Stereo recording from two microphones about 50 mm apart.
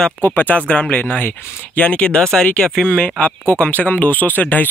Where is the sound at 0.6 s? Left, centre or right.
Left.